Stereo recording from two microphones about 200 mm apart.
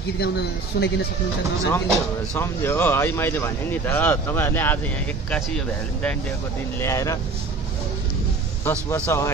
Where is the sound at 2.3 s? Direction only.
10° left (ahead or behind).